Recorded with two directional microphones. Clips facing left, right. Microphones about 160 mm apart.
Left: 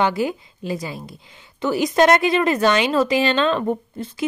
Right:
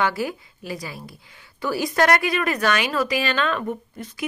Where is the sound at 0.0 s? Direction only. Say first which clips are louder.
Left 4 dB; 20° left (ahead or behind).